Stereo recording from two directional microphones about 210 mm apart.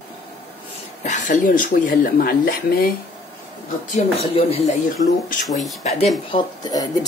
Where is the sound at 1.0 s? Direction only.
35° left (ahead or behind).